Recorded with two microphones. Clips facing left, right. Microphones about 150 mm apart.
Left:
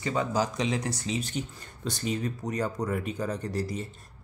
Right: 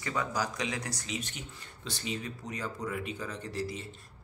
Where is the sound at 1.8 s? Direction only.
45° left (ahead or behind).